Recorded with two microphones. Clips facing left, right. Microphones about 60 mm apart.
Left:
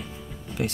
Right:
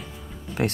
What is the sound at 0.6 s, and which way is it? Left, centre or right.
Speech, right.